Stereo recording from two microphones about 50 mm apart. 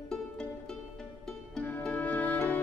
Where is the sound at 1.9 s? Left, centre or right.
Left.